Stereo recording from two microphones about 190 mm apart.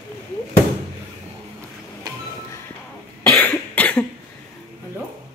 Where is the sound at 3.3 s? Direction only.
10° left (ahead or behind).